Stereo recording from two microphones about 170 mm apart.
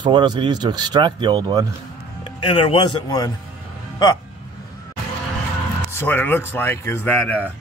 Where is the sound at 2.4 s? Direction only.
30° left (ahead or behind).